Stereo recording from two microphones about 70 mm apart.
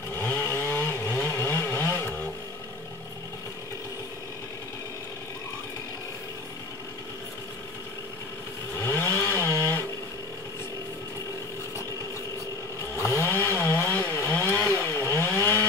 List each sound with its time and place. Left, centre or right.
0.2 s chainsaw: left
8.7 s chainsaw: left
12.9 s chainsaw: left